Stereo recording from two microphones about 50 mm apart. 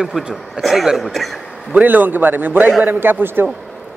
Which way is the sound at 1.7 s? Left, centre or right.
Right.